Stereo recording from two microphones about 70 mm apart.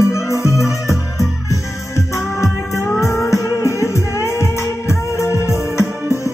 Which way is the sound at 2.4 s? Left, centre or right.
Left.